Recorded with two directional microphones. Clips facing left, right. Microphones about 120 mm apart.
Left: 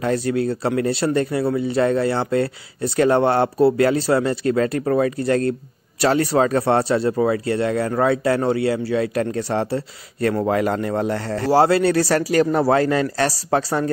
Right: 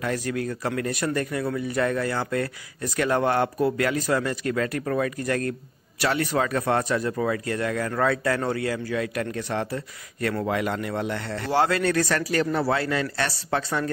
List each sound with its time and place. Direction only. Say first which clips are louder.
0.0 s a man's voice: left 7 dB; 30° left (ahead or behind)